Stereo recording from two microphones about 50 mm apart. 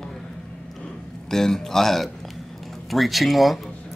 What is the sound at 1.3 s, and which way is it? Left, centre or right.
A man's voice, centre.